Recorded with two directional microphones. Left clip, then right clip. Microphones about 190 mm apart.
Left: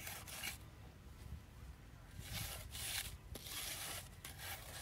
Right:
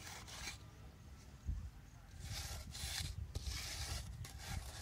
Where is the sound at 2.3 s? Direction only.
Centre (ahead or behind).